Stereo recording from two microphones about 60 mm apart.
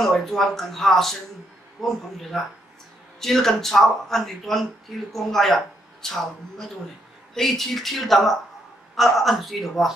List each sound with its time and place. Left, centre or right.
0.0 s speech: centre
3.2 s a woman's voice: centre
7.3 s speech: centre